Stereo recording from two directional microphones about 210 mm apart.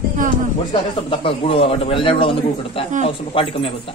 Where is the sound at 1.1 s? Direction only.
25° left (ahead or behind).